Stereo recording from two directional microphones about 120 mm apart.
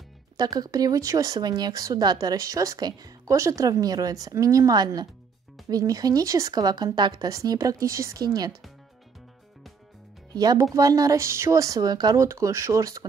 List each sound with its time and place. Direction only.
0.4 s speech: 30° right (ahead or behind)
10.3 s speech: 30° right (ahead or behind)